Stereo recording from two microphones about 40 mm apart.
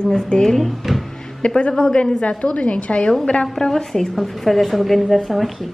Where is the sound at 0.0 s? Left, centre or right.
Centre.